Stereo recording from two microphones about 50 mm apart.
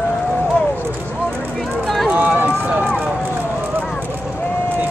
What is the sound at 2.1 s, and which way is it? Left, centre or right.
Run, right.